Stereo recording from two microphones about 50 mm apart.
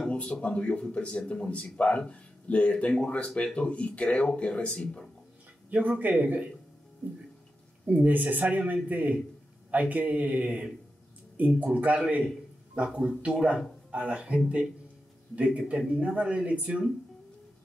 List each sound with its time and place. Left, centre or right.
0.1 s speech: left
5.7 s speech: right
7.8 s speech: right